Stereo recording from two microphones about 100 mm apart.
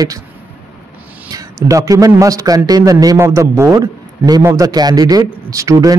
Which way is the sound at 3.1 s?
25° right (ahead or behind).